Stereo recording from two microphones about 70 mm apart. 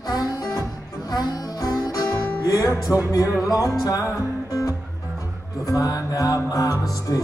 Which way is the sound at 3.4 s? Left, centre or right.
Left.